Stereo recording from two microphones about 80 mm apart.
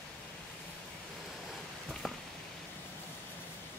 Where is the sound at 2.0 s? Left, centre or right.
Centre.